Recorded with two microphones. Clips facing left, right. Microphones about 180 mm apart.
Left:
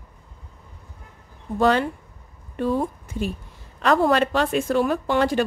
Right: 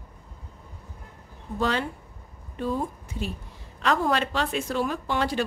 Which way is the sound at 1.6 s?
50° left (ahead or behind).